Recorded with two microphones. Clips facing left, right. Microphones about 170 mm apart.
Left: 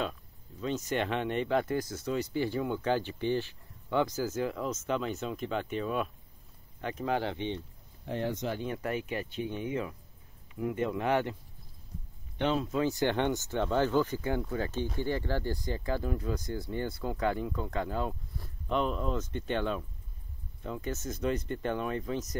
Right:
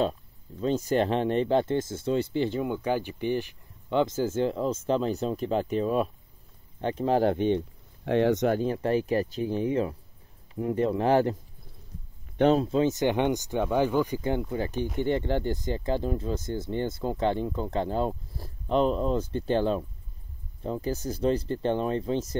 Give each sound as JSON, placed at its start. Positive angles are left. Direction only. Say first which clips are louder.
{"t": 0.6, "sound": "speech", "louder": "right 7 dB", "side_deg": -35}
{"t": 7.2, "sound": "speech", "louder": "right 11 dB", "side_deg": -50}
{"t": 8.0, "sound": "speech", "louder": "right 10 dB", "side_deg": -80}
{"t": 8.5, "sound": "speech", "louder": "right 8 dB", "side_deg": -30}
{"t": 12.4, "sound": "speech", "louder": "right 8 dB", "side_deg": -40}
{"t": 12.6, "sound": "speech", "louder": "right 5 dB", "side_deg": -25}